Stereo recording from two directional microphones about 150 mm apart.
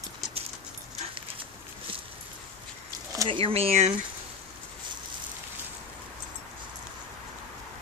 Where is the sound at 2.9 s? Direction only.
30° right (ahead or behind).